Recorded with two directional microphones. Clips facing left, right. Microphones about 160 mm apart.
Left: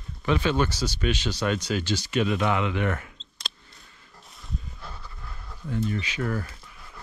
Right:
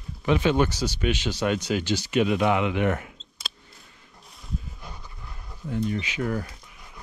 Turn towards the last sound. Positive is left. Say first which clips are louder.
# right 1 dB
turn(degrees=-20)  # may be behind; listen again after turning